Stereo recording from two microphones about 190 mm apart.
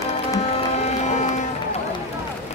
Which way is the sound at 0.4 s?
35° left (ahead or behind).